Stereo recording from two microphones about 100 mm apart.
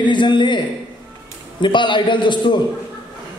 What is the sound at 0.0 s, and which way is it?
Speech, 50° left (ahead or behind).